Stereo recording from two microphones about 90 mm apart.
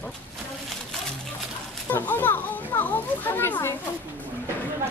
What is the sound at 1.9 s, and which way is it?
A child's voice, 25° left (ahead or behind).